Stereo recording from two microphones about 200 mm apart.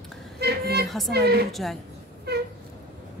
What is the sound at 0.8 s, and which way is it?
Speech, centre (ahead or behind).